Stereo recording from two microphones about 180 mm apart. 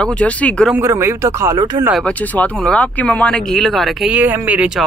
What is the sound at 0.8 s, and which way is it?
Speech, 15° right (ahead or behind).